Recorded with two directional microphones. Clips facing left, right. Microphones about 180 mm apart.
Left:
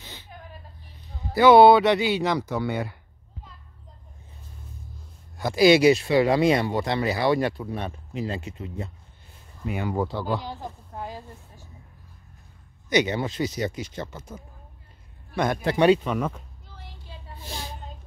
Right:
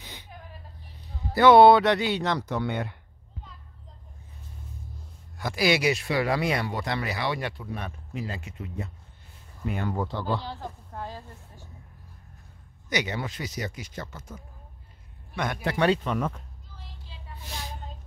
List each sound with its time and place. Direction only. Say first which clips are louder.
0.0 s whimper: left 1 dB; 15° right (ahead or behind)
1.3 s speech: left 1 dB; centre (ahead or behind)
5.4 s speech: left 8 dB; 25° left (ahead or behind)
7.2 s speech: left 8 dB; 40° left (ahead or behind)
8.1 s speech: left 4 dB; 25° left (ahead or behind)
9.8 s a woman's voice: left 4 dB; 10° left (ahead or behind)
12.9 s speech: left 7 dB; 25° left (ahead or behind)
15.3 s speech: left 5 dB; 35° left (ahead or behind)
15.8 s a woman's voice: left 5 dB; 10° left (ahead or behind)
16.7 s a sound: left 4 dB; 65° left (ahead or behind)
17.4 s speech: left 2 dB; 30° left (ahead or behind)